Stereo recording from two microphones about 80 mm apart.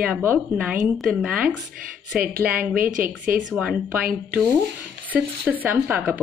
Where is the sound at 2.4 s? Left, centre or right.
Centre.